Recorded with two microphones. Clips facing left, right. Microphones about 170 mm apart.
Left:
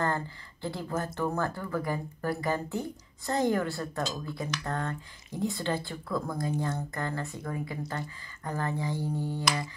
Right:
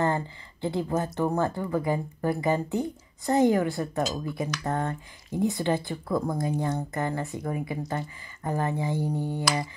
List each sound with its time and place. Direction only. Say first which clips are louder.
0.0 s speech: right 4 dB; 20° right (ahead or behind)